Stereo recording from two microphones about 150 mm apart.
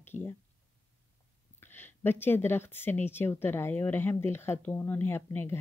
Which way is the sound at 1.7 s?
15° left (ahead or behind).